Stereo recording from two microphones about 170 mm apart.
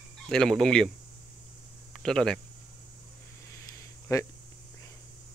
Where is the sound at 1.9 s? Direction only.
5° left (ahead or behind).